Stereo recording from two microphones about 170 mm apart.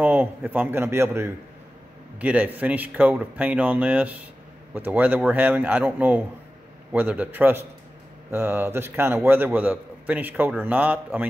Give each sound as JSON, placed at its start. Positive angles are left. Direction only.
{"t": 0.0, "sound": "a man's voice", "side_deg": -10}